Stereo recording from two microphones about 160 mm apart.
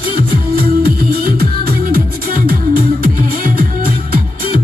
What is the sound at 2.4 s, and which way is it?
Music, 65° right (ahead or behind).